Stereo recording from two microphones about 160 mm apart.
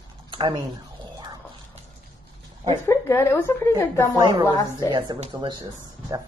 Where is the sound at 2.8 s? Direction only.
15° left (ahead or behind).